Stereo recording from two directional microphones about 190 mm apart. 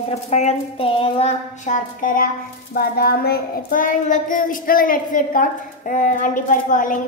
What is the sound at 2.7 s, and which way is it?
Child singing, 50° left (ahead or behind).